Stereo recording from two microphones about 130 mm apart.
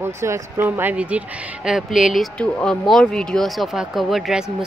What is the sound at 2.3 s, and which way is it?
Speech, 10° left (ahead or behind).